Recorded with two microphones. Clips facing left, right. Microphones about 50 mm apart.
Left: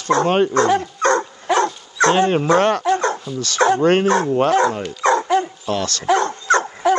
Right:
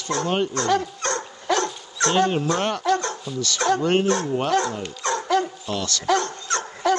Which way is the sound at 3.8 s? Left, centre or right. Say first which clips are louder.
Left 5 dB; left.